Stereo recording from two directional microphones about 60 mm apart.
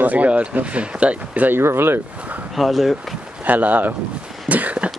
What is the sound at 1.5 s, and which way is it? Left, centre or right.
Speech, right.